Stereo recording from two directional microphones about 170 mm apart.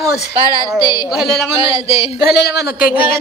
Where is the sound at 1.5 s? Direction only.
35° left (ahead or behind).